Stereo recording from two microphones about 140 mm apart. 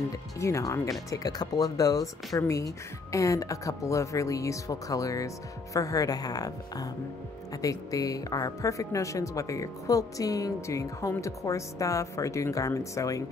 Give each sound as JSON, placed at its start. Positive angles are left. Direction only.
{"t": 0.1, "sound": "speech", "side_deg": 20}